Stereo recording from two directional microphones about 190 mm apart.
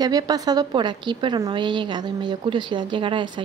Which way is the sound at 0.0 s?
20° right (ahead or behind).